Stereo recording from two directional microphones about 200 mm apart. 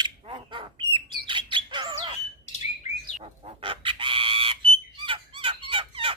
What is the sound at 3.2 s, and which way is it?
Chicken, 25° right (ahead or behind).